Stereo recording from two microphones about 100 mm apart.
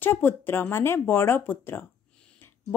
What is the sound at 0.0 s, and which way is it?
A woman's voice, 20° left (ahead or behind).